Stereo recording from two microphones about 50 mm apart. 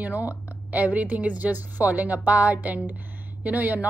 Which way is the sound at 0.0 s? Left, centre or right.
Right.